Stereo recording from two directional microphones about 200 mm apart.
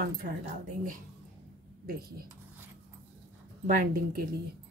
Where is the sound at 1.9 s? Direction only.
50° right (ahead or behind).